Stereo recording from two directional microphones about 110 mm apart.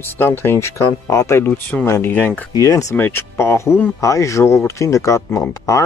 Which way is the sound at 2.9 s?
20° left (ahead or behind).